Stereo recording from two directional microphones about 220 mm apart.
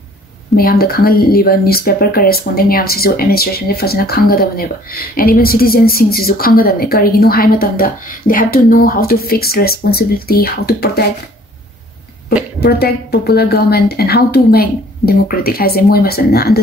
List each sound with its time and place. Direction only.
0.6 s speech: 45° left (ahead or behind)
12.5 s speech: 45° left (ahead or behind)